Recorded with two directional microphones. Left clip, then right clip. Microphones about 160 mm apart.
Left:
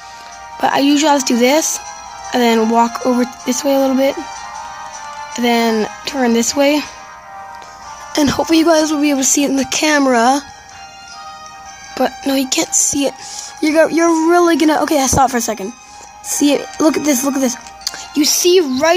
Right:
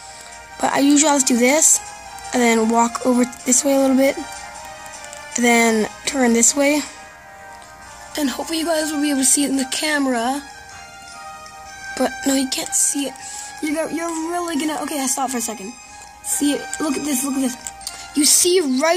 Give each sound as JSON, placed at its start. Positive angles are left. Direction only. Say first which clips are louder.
{"t": 0.6, "sound": "speech", "louder": "left 3 dB", "side_deg": 10}
{"t": 5.3, "sound": "speech", "louder": "left 1 dB", "side_deg": 5}
{"t": 8.1, "sound": "a woman's voice", "louder": "left 10 dB", "side_deg": 35}
{"t": 12.2, "sound": "speech", "louder": "left 3 dB", "side_deg": 10}
{"t": 12.7, "sound": "speech", "louder": "left 7 dB", "side_deg": 50}
{"t": 18.1, "sound": "speech", "louder": "left 4 dB", "side_deg": 15}